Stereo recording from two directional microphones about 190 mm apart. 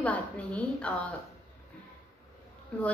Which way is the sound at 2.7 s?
5° left (ahead or behind).